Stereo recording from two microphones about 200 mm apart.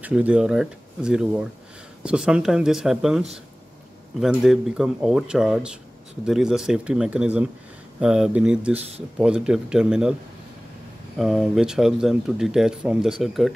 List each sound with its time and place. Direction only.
0.0 s speech: 5° right (ahead or behind)
4.3 s speech: centre (ahead or behind)
8.7 s speech: 30° right (ahead or behind)
9.2 s speech: 5° right (ahead or behind)
11.1 s speech: centre (ahead or behind)